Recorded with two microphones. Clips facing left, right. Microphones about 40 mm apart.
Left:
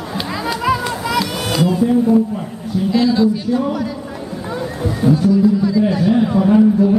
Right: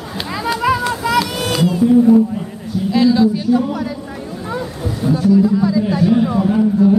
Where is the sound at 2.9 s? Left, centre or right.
Centre.